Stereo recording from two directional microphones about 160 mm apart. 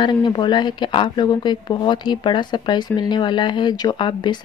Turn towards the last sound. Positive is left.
turn(degrees=30)  # may be behind; listen again after turning